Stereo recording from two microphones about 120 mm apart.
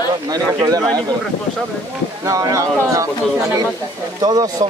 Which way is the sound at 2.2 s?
30° right (ahead or behind).